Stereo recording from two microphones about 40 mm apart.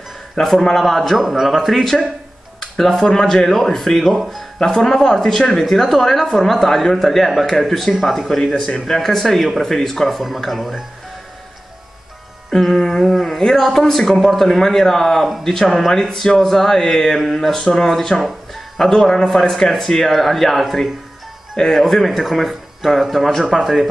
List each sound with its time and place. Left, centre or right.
0.4 s speech: centre
2.6 s a sound: centre
3.1 s speech: centre
4.6 s speech: centre
8.5 s a man's voice: left
8.8 s speech: centre
10.0 s speech: centre
12.4 s speech: centre
16.1 s speech: centre
16.3 s speech: centre
17.2 s speech: centre
17.5 s speech: centre